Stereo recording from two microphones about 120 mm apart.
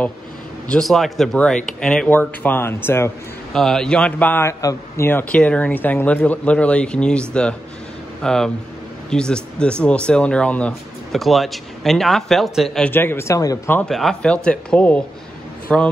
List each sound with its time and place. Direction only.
0.7 s speech: 5° left (ahead or behind); by 3.1 s 20° left (ahead or behind)
3.5 s speech: 5° left (ahead or behind)
12.9 s speech: 20° left (ahead or behind)
13.8 s speech: 5° left (ahead or behind)